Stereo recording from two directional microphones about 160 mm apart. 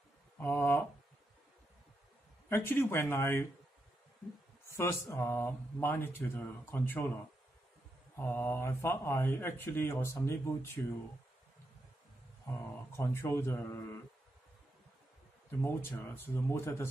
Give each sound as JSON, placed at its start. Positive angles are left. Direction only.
{"t": 0.4, "sound": "a sound", "side_deg": 15}
{"t": 2.5, "sound": "speech", "side_deg": 15}
{"t": 4.6, "sound": "speech", "side_deg": 15}
{"t": 8.2, "sound": "speech", "side_deg": 15}
{"t": 12.9, "sound": "speech", "side_deg": 15}
{"t": 15.6, "sound": "speech", "side_deg": 15}